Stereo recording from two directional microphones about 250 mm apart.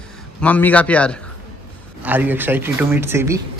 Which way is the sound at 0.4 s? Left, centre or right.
Centre.